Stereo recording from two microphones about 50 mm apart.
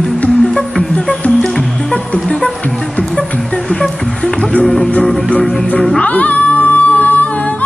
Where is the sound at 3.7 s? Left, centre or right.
Centre.